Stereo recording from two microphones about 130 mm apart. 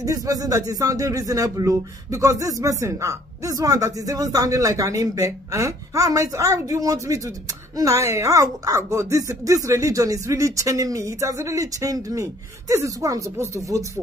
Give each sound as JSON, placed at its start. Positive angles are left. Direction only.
{"t": 0.0, "sound": "speech", "side_deg": -25}